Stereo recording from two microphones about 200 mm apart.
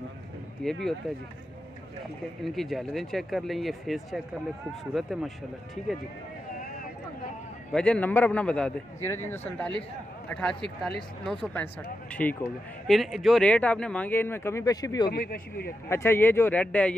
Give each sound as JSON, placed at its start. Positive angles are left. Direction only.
{"t": 0.6, "sound": "speech", "side_deg": 5}
{"t": 2.4, "sound": "speech", "side_deg": 0}
{"t": 7.7, "sound": "speech", "side_deg": 5}
{"t": 15.1, "sound": "speech", "side_deg": 45}
{"t": 15.9, "sound": "speech", "side_deg": 10}